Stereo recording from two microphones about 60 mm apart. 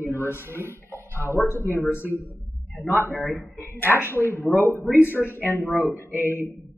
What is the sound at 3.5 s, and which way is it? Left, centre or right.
A man's voice, left.